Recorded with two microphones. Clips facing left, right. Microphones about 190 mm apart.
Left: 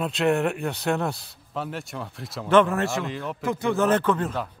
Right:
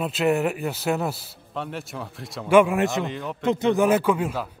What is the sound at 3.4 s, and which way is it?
Speech, 20° right (ahead or behind).